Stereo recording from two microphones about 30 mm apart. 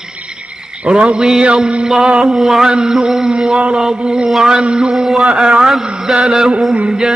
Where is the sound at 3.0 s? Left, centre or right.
Centre.